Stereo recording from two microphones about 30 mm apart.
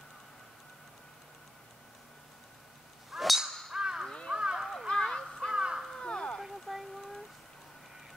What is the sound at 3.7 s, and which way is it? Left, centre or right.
Crow, right.